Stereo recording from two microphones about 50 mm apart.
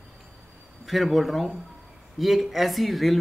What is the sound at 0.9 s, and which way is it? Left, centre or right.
A woman's voice, centre.